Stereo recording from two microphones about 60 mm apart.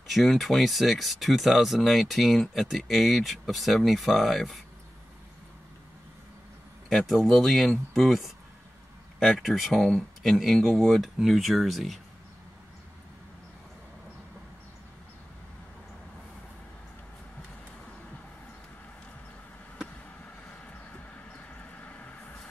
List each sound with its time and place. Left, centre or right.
0.1 s speech: centre
6.9 s speech: centre
9.4 s speech: centre
20.4 s vehicle: left